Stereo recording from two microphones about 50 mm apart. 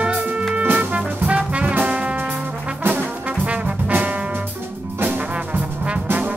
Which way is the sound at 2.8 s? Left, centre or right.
Right.